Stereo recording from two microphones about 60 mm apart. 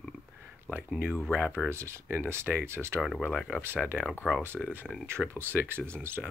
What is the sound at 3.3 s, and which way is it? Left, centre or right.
Speech, centre.